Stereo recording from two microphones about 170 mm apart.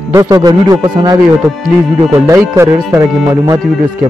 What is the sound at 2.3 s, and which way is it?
Speech, 15° right (ahead or behind).